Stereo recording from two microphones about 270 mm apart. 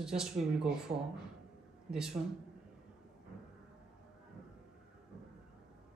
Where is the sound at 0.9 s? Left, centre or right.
Right.